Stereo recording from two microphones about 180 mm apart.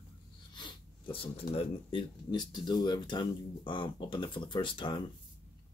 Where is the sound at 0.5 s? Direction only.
25° left (ahead or behind).